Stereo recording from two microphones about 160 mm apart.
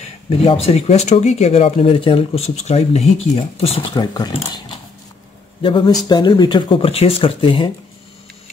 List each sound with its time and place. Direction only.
0.4 s speech: 35° left (ahead or behind)
3.9 s speech: 25° left (ahead or behind)
5.6 s speech: 30° left (ahead or behind)